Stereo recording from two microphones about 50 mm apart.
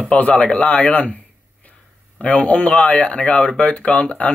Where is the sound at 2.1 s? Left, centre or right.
Left.